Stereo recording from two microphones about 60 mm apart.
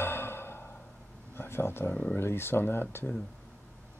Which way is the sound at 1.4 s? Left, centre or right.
Left.